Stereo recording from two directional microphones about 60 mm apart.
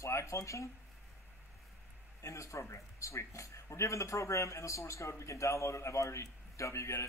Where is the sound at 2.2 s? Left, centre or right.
Left.